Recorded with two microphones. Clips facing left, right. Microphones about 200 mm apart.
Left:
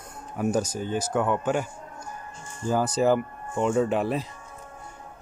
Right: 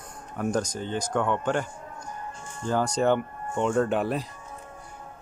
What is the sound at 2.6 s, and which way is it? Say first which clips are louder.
Speech: left 1 dB; 5° left (ahead or behind).